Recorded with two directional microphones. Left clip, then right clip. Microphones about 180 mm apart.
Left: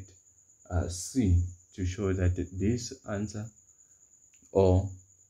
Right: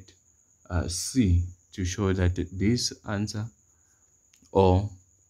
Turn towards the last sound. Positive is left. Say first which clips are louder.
# right 3 dB
turn(degrees=-30)  # may be behind; listen again after turning